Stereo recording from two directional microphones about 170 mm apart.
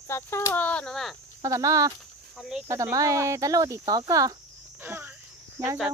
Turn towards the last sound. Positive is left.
turn(degrees=-20)  # may be behind; listen again after turning